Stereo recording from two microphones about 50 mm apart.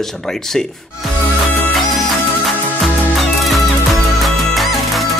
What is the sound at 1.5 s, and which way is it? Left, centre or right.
Music, left.